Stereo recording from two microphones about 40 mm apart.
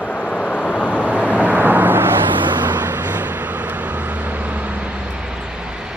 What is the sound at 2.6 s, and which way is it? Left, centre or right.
Vehicle, right.